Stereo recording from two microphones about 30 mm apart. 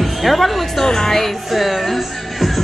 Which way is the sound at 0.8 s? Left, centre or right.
Centre.